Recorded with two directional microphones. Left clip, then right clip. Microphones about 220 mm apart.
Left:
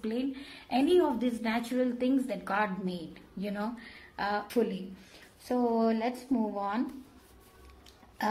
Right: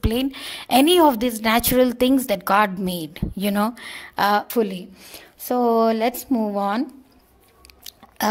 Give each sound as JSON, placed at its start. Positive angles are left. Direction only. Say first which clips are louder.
{"t": 0.0, "sound": "a woman's voice", "louder": "right 10 dB", "side_deg": -50}